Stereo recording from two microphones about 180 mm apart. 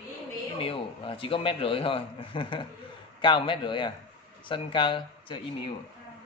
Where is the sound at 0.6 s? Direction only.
30° left (ahead or behind).